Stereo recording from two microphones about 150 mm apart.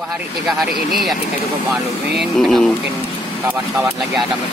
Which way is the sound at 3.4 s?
15° right (ahead or behind).